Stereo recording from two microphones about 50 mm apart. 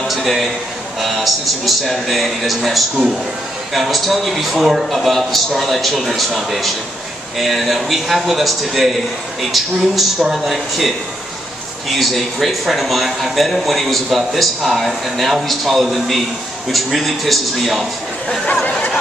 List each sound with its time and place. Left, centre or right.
0.1 s a man's voice: centre
11.9 s speech: centre
18.4 s speech: centre